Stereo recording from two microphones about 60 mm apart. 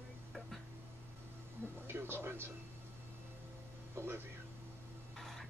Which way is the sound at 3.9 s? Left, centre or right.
Right.